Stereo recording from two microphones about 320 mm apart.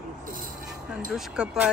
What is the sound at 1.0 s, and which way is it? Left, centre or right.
Speech, centre.